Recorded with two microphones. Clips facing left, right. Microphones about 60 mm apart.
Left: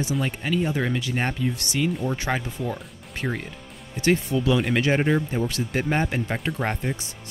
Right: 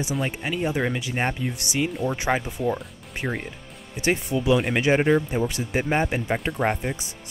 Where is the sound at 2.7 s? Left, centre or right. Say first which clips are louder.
Right 1 dB; centre.